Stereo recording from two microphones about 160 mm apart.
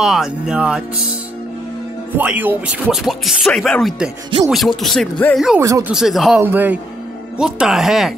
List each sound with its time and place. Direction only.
0.0 s speech: centre (ahead or behind)
2.1 s speech: 10° right (ahead or behind)
5.6 s speech: 20° right (ahead or behind)
5.9 s speech: 5° right (ahead or behind)